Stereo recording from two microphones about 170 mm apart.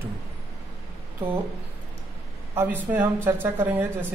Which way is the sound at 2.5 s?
10° right (ahead or behind).